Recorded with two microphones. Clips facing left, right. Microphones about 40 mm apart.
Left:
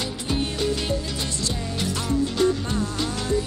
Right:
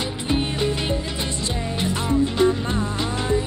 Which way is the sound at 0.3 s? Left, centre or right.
Right.